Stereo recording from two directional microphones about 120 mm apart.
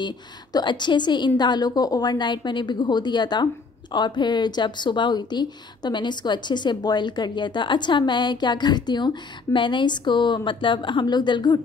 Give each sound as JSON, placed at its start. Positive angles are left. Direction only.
{"t": 0.0, "sound": "a woman's voice", "side_deg": 35}